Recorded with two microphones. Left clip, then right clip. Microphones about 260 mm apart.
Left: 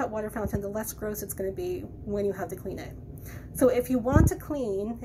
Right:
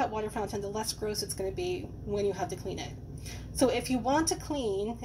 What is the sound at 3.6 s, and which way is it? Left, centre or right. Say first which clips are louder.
Speech: left 4 dB; centre.